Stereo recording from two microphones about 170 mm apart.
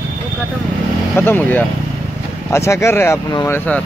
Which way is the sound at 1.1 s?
10° left (ahead or behind).